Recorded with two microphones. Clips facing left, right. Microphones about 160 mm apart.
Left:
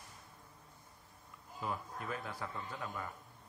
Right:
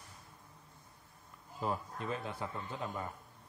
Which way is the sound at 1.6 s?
30° right (ahead or behind).